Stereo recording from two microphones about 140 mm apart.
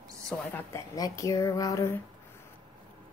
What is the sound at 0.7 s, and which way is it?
Speech, 25° left (ahead or behind).